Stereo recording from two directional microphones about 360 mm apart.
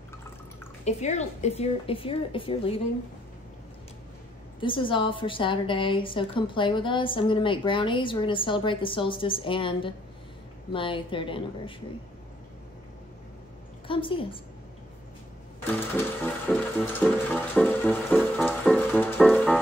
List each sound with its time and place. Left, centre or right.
0.8 s a woman's voice: centre
4.6 s a woman's voice: centre
13.8 s a woman's voice: centre
16.4 s music: centre